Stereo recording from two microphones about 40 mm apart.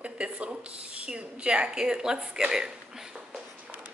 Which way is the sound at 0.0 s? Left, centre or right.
Right.